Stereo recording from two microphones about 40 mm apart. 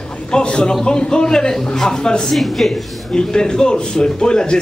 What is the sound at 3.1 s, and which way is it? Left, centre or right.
A woman's voice, centre.